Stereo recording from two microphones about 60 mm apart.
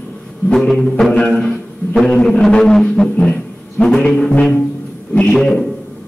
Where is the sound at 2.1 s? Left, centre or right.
Centre.